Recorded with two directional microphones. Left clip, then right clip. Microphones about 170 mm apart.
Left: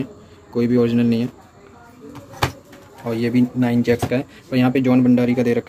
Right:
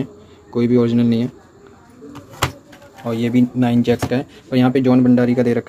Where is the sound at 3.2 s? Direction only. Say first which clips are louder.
Right 2 dB; 35° right (ahead or behind).